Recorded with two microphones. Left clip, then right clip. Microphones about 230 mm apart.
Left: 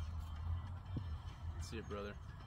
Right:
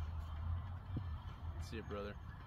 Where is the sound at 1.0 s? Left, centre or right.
Left.